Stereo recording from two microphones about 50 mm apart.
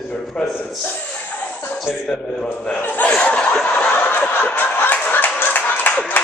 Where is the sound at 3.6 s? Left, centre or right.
Left.